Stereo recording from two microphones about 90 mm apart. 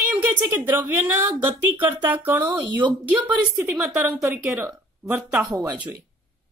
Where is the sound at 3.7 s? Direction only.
Centre (ahead or behind).